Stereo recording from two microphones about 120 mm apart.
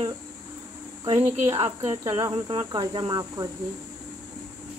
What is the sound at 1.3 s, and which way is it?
Speech, 60° right (ahead or behind).